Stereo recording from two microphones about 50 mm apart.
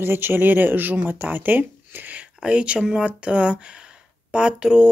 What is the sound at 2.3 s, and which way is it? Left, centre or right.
Speech, right.